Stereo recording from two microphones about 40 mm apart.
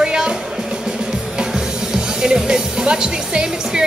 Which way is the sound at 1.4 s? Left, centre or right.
Centre.